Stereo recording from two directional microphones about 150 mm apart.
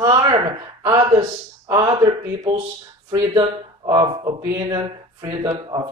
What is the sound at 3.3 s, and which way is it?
Speech, 30° right (ahead or behind).